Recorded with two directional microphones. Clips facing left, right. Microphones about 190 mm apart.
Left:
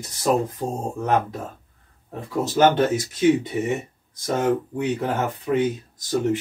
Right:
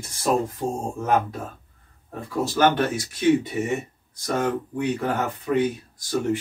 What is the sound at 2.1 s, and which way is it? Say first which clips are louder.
Speech: left 2 dB; 20° left (ahead or behind).